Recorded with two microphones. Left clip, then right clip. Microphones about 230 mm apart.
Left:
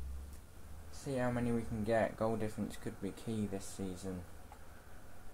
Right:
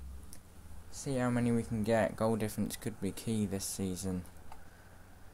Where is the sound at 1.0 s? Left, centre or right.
Right.